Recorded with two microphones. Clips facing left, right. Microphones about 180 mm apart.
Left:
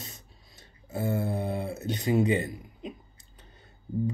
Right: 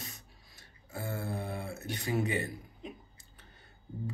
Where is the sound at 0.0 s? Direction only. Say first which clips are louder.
Left 2 dB; 20° left (ahead or behind).